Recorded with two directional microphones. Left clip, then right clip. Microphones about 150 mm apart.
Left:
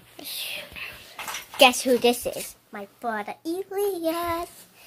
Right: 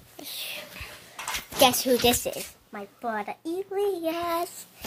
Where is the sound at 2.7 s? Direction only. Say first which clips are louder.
Left 2 dB; centre (ahead or behind).